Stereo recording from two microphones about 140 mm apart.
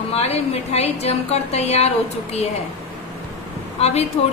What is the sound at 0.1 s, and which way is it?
Speech, 45° left (ahead or behind).